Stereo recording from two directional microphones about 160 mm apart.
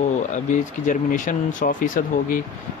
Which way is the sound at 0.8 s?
55° left (ahead or behind).